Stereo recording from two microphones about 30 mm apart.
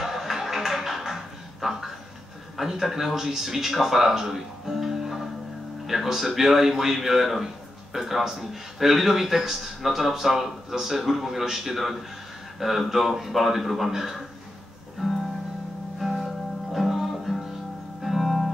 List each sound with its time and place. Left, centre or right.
0.0 s a sound: centre
2.5 s a man's voice: centre
3.8 s music: centre
5.9 s a man's voice: centre
15.0 s music: centre
16.0 s music: centre
16.8 s music: centre
17.1 s music: centre